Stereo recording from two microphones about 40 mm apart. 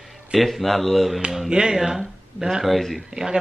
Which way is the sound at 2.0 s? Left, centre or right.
Centre.